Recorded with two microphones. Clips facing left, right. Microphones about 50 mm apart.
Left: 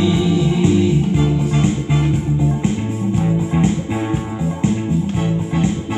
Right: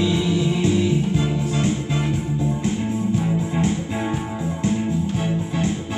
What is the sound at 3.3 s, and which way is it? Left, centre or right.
Music, centre.